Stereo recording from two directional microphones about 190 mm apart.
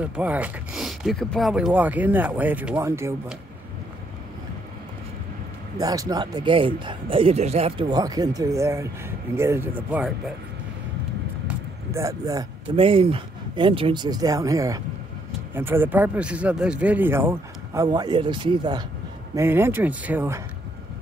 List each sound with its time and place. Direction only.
0.0 s speech: 5° right (ahead or behind)
5.8 s speech: 20° right (ahead or behind)
11.4 s speech: 15° right (ahead or behind)
17.8 s speech: 20° right (ahead or behind)
19.3 s speech: 15° right (ahead or behind)